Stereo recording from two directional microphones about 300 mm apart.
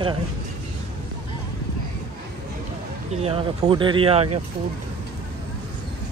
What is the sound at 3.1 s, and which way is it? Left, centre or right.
Speech, centre.